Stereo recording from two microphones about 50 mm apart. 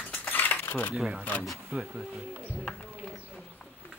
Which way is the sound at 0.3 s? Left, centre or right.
Left.